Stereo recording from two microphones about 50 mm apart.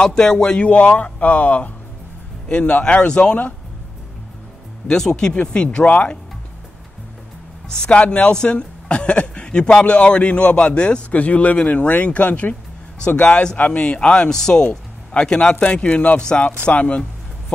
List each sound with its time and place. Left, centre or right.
0.0 s speech: centre
0.7 s speech: left
2.4 s speech: centre
4.8 s speech: centre
7.7 s speech: centre